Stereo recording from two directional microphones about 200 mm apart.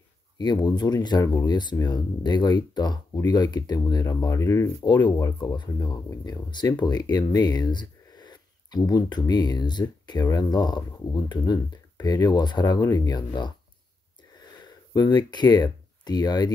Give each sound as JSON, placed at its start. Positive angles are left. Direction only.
{"t": 0.4, "sound": "speech", "side_deg": 20}
{"t": 15.0, "sound": "speech", "side_deg": 20}